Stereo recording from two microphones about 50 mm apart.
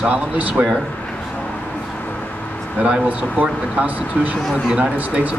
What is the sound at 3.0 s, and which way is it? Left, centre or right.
Speech, right.